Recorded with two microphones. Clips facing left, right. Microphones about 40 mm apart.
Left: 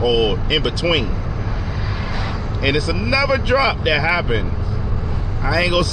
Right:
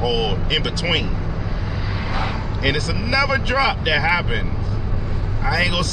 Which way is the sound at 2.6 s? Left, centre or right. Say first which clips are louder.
Left 3 dB; centre.